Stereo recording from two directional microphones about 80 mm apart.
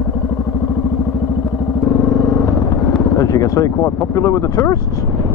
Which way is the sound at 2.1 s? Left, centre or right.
Left.